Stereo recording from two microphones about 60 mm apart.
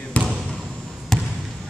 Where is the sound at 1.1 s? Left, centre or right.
Centre.